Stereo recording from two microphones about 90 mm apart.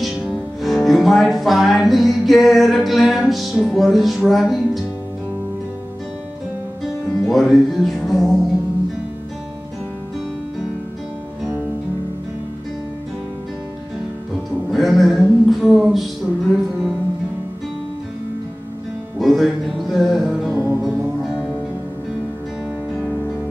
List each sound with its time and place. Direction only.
0.3 s music: centre (ahead or behind)
6.8 s music: centre (ahead or behind)
14.7 s music: centre (ahead or behind)
19.1 s music: centre (ahead or behind)
20.5 s music: 30° right (ahead or behind)
20.8 s music: 5° right (ahead or behind)